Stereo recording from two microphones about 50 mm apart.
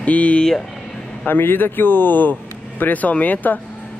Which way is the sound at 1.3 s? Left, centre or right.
Left.